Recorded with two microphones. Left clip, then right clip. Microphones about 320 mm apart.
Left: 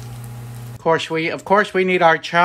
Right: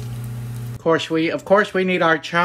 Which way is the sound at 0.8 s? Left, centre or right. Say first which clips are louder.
Even; left.